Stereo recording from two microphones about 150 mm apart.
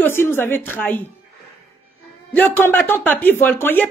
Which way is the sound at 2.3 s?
15° left (ahead or behind).